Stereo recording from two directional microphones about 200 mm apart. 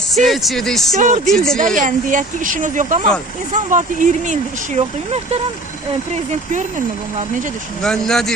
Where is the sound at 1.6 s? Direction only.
40° right (ahead or behind).